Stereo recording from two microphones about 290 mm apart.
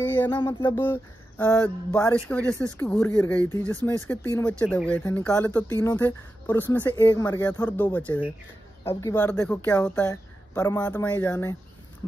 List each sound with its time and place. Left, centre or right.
0.0 s speech: centre